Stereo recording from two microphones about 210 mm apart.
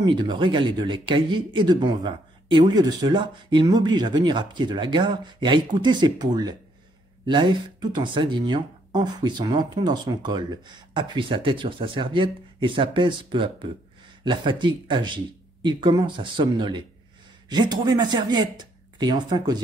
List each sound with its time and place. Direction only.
0.0 s speech: 20° right (ahead or behind)